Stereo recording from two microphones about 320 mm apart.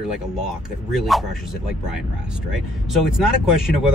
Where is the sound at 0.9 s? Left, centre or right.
Centre.